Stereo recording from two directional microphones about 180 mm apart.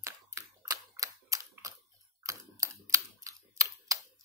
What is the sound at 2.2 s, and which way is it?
Camera, 20° right (ahead or behind).